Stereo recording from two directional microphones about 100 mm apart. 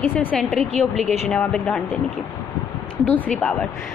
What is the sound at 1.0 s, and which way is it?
Speech, 90° right.